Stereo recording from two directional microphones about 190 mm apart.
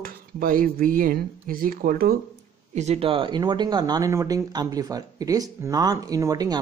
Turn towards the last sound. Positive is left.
turn(degrees=-20)  # may be behind; listen again after turning